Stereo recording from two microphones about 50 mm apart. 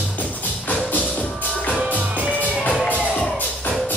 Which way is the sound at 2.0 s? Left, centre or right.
Right.